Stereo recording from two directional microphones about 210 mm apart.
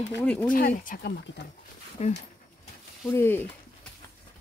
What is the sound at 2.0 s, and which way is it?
Speech, 35° left (ahead or behind).